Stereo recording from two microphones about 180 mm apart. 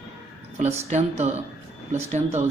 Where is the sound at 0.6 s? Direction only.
40° right (ahead or behind).